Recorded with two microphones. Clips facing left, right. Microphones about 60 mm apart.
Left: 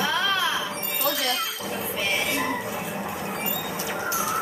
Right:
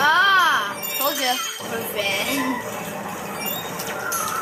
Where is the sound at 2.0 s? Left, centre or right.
Right.